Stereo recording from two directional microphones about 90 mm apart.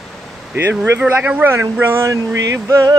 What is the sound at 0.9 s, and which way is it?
Speech, 20° right (ahead or behind).